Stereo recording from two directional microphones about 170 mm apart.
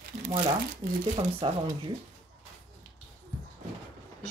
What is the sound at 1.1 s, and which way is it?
Speech, 25° right (ahead or behind).